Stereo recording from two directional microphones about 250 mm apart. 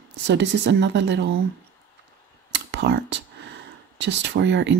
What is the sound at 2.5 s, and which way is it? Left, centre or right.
Speech, right.